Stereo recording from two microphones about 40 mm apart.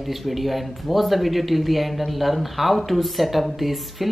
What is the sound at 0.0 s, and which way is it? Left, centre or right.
Speech, centre.